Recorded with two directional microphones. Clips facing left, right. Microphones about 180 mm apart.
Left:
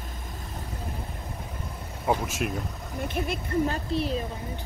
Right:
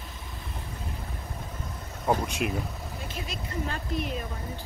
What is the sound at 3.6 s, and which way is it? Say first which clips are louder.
Speech: left 4 dB; 35° left (ahead or behind).